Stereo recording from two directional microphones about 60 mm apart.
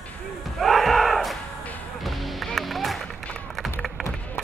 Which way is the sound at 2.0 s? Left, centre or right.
Centre.